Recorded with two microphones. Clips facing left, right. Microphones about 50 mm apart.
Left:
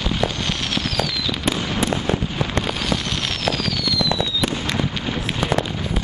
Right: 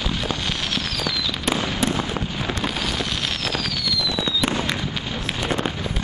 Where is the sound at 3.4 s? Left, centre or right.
Centre.